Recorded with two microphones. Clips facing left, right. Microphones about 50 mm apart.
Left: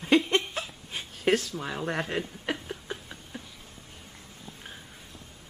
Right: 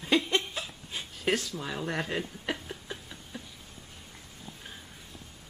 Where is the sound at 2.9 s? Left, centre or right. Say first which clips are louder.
Left 3 dB; left.